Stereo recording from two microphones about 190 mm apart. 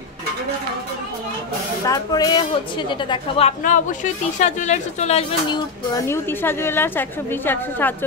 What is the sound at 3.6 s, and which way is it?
A woman's voice, 40° left (ahead or behind).